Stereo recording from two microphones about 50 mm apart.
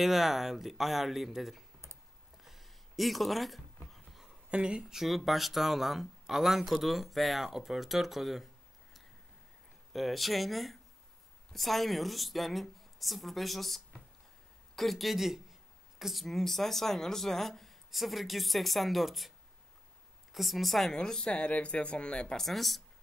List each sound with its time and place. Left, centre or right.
0.0 s speech: centre
2.4 s a sound: centre
4.5 s speech: centre
4.9 s speech: centre
9.9 s speech: centre
20.3 s speech: centre
20.9 s speech: centre
22.4 s speech: centre